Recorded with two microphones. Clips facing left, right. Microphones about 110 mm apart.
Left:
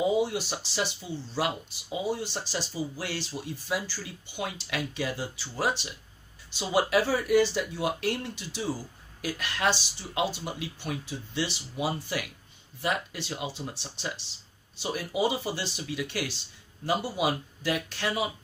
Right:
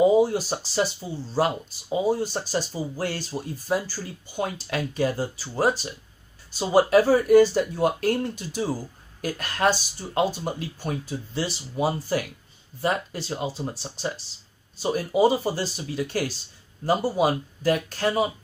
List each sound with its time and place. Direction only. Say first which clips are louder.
0.0 s speech: right 7 dB; 40° right (ahead or behind)